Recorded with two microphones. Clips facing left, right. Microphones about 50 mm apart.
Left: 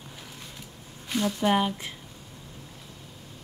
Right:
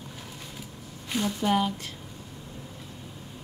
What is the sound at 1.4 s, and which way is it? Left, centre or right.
Speech, centre.